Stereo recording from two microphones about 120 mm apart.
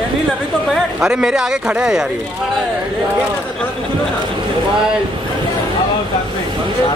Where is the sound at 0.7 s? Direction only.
5° right (ahead or behind).